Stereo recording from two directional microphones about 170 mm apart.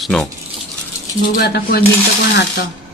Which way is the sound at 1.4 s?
65° left (ahead or behind).